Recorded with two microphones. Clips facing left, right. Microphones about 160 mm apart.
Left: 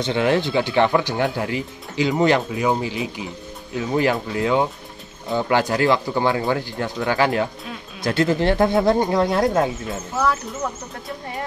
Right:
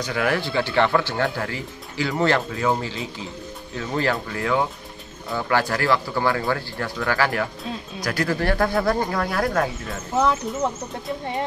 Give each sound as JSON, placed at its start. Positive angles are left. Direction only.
{"t": 0.0, "sound": "speech", "side_deg": 25}
{"t": 10.1, "sound": "speech", "side_deg": -20}